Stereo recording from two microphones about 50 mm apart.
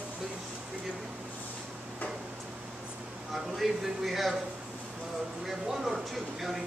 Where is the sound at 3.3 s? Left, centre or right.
Centre.